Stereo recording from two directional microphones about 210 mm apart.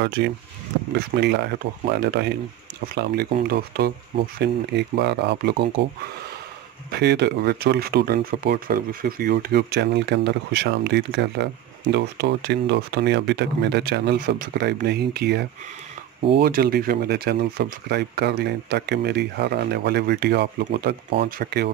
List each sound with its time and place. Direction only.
0.0 s speech: 50° right (ahead or behind)
6.9 s speech: 50° right (ahead or behind)